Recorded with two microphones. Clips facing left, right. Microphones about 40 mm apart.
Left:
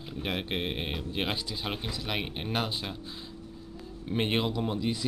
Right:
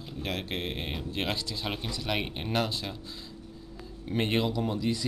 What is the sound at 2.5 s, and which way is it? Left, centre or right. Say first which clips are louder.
Speech: right 2 dB; centre.